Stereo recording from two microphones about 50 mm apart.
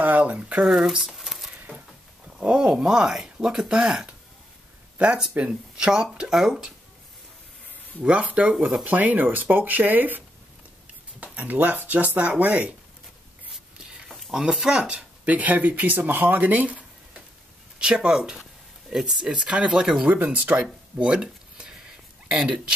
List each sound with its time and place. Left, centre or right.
0.0 s speech: right
0.6 s speech: centre
1.0 s a sound: centre
2.4 s speech: centre
8.0 s speech: right
8.5 s speech: centre
8.8 s speech: right
11.3 s speech: right
14.0 s a sound: centre
14.3 s speech: centre; by 16.8 s right
17.7 s speech: centre
20.3 s speech: right
21.0 s a sound: right
22.3 s speech: centre